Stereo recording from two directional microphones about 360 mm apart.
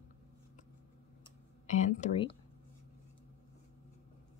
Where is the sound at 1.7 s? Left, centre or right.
Centre.